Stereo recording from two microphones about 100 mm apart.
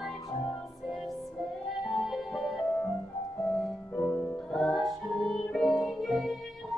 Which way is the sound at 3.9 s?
25° left (ahead or behind).